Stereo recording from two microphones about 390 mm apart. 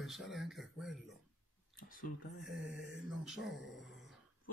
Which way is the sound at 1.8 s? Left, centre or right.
Left.